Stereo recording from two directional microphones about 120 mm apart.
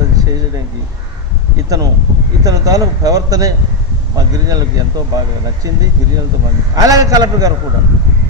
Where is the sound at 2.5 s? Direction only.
30° right (ahead or behind).